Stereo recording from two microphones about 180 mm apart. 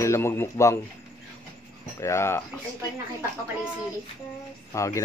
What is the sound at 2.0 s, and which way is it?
Speech, 15° left (ahead or behind).